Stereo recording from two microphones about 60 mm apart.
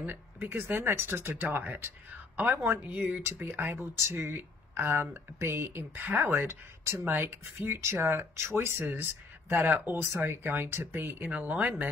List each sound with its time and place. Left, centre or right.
0.0 s speech: right
6.0 s speech: right